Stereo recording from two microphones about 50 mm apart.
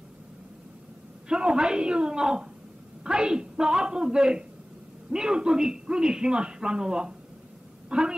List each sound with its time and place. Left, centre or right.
1.3 s a woman's voice: centre